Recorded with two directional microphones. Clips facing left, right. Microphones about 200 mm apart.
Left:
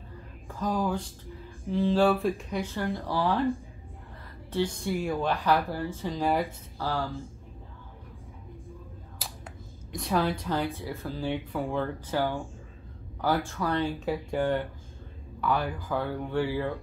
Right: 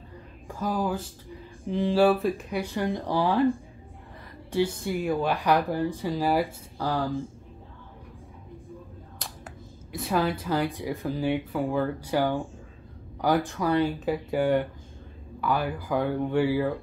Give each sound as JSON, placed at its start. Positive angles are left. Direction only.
{"t": 0.5, "sound": "speech", "side_deg": -5}
{"t": 1.7, "sound": "speech", "side_deg": -15}
{"t": 2.6, "sound": "speech", "side_deg": -15}
{"t": 4.5, "sound": "speech", "side_deg": -10}
{"t": 9.2, "sound": "finger snapping", "side_deg": 5}
{"t": 9.9, "sound": "speech", "side_deg": -5}